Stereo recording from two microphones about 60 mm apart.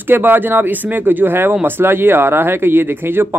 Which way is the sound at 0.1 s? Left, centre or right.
Right.